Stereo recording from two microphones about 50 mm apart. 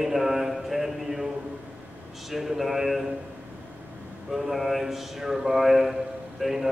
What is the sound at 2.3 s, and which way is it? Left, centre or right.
Speech, centre.